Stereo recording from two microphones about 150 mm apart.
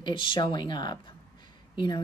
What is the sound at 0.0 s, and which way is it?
Speech, 35° left (ahead or behind).